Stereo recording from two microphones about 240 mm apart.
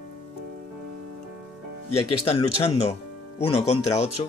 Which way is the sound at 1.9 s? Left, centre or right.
Left.